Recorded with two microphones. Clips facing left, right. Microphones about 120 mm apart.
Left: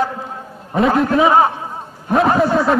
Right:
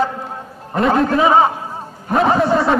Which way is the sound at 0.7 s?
Centre (ahead or behind).